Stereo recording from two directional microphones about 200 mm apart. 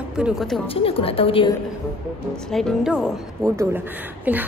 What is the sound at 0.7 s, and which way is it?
Speech, 30° left (ahead or behind).